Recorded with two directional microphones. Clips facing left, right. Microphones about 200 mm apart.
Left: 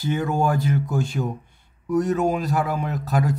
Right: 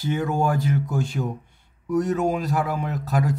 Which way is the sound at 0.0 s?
45° left (ahead or behind).